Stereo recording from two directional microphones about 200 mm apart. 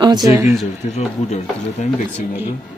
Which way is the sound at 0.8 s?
30° left (ahead or behind).